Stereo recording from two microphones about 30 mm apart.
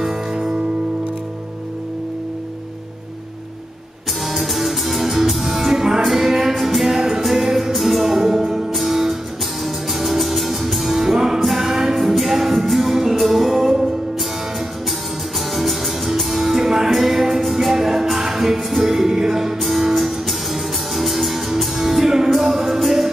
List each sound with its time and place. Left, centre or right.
0.0 s music: right
4.3 s music: centre
8.1 s music: centre
14.9 s music: centre